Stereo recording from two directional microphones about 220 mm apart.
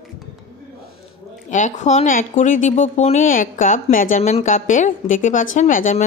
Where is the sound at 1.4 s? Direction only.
35° left (ahead or behind).